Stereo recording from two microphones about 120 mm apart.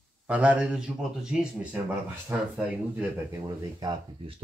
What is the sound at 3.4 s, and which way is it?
Speech, 35° right (ahead or behind).